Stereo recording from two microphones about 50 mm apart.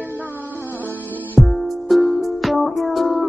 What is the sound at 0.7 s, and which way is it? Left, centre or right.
Music, left.